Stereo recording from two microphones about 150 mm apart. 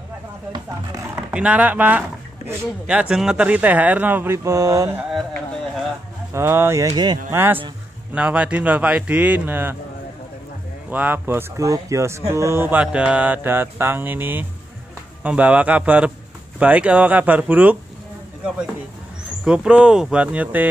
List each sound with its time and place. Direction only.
0.5 s speech: 20° right (ahead or behind)
6.3 s speech: 15° right (ahead or behind)
7.2 s speech: 15° right (ahead or behind)
10.9 s speech: 10° right (ahead or behind)
19.4 s speech: 5° right (ahead or behind)